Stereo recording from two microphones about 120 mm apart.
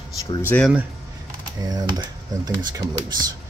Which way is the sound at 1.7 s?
35° right (ahead or behind).